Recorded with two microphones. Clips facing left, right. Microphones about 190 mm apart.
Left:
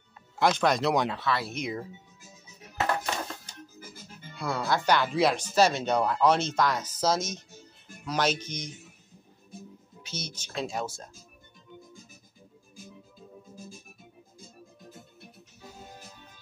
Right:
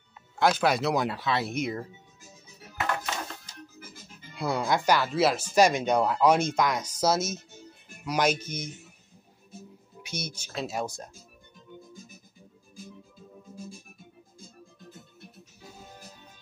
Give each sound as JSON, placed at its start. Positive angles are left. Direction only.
{"t": 0.4, "sound": "speech", "side_deg": -5}
{"t": 1.2, "sound": "speech", "side_deg": -25}
{"t": 1.5, "sound": "speech", "side_deg": -5}
{"t": 4.4, "sound": "speech", "side_deg": -20}
{"t": 10.0, "sound": "speech", "side_deg": -10}